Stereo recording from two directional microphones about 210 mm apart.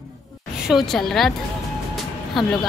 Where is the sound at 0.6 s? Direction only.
Centre (ahead or behind).